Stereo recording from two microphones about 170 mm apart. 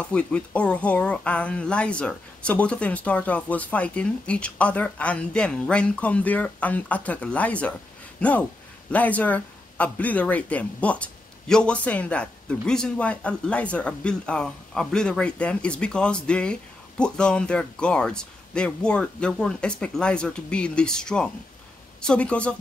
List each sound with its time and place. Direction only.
0.0 s speech: 5° left (ahead or behind)